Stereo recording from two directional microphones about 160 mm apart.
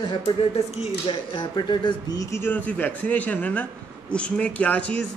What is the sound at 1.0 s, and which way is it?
A man's voice, 30° left (ahead or behind).